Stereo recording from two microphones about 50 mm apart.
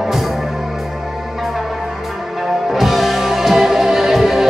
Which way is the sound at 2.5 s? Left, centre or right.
Centre.